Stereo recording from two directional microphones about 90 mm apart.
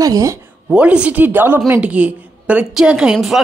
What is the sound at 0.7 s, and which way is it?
A woman's voice, 15° right (ahead or behind).